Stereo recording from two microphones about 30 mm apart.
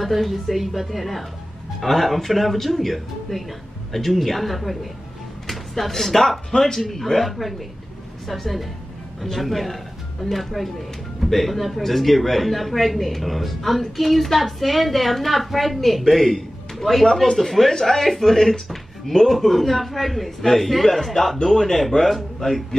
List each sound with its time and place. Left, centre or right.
0.0 s speech: centre
16.7 s a sound: centre
17.4 s speech: centre